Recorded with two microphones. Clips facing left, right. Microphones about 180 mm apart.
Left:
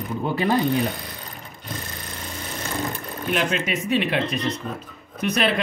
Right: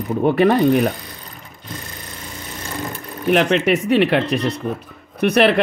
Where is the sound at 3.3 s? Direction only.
65° right (ahead or behind).